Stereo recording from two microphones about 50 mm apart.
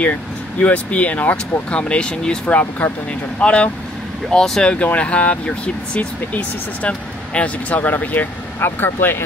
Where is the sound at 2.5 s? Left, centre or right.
Left.